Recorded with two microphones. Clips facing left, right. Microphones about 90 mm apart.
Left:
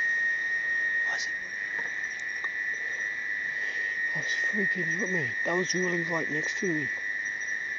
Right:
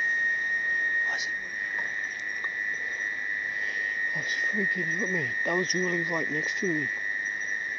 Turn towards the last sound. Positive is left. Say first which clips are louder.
# right 1 dB
turn(degrees=-5)  # may be behind; listen again after turning